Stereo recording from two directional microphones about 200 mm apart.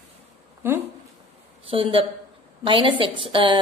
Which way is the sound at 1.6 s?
25° right (ahead or behind).